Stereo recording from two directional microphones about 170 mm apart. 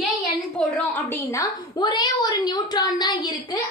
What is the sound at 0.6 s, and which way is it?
A woman's voice, 10° left (ahead or behind).